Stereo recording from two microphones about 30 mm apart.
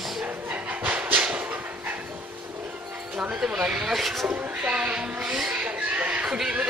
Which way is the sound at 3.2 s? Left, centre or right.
Right.